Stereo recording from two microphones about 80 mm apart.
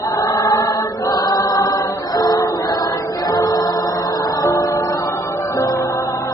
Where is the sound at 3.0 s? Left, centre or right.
Left.